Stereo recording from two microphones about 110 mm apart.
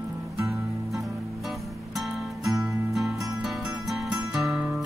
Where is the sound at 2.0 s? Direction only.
Centre (ahead or behind).